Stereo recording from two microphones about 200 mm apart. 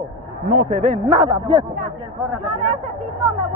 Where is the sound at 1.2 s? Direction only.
20° right (ahead or behind).